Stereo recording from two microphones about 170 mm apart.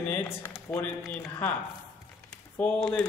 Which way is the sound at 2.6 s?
5° left (ahead or behind).